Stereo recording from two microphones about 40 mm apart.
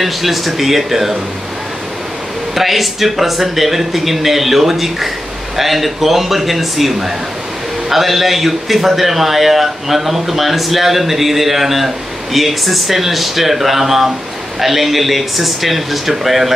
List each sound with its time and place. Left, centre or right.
0.0 s a man's voice: centre
2.5 s a man's voice: centre